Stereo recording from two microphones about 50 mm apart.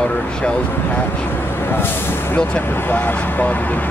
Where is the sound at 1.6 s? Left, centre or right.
Left.